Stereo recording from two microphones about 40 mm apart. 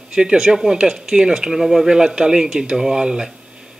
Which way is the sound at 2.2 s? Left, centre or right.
Right.